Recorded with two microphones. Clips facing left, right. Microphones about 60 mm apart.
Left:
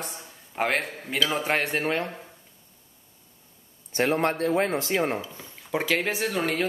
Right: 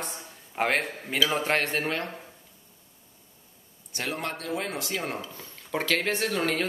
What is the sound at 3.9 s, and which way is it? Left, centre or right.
Speech, left.